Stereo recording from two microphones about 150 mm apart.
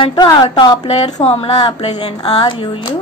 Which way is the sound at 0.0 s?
35° left (ahead or behind).